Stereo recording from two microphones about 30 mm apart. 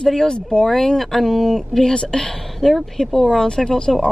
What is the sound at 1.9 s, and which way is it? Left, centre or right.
Speech, left.